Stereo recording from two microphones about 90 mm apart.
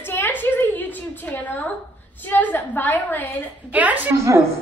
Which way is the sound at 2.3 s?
20° left (ahead or behind).